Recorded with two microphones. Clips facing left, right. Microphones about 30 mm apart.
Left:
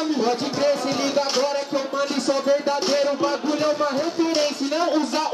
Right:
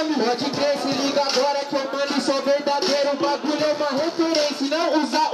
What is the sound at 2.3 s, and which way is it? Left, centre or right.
Music, right.